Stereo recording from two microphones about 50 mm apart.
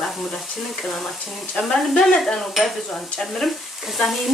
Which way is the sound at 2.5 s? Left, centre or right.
Centre.